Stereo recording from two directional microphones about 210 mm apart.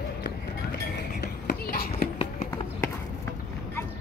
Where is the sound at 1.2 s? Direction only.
50° left (ahead or behind).